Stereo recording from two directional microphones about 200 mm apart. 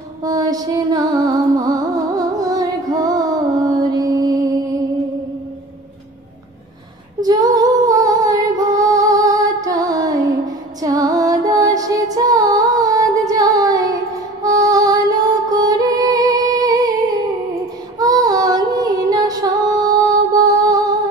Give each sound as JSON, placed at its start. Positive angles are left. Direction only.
{"t": 0.2, "sound": "music", "side_deg": -20}
{"t": 7.2, "sound": "female singing", "side_deg": -20}
{"t": 10.8, "sound": "music", "side_deg": -20}
{"t": 17.9, "sound": "music", "side_deg": -20}